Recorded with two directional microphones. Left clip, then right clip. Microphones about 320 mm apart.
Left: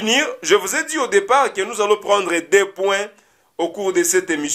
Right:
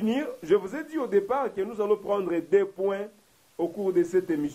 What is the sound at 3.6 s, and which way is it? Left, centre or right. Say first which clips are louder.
Speech: left 8 dB; left.